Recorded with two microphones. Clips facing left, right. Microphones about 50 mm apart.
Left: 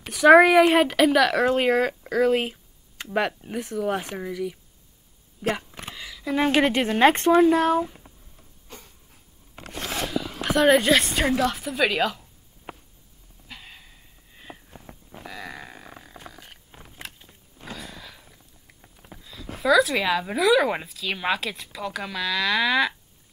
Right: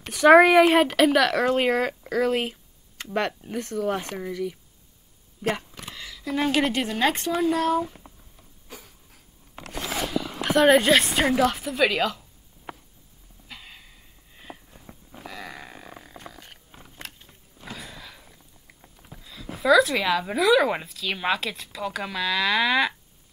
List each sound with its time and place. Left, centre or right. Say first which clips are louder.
0.0 s speech: left 1 dB; centre; by 7.9 s left
10.4 s speech: right 1 dB; centre
13.5 s a sound: even; centre
14.9 s livestock: even; centre
17.6 s a sound: left 1 dB; centre
19.1 s speech: even; centre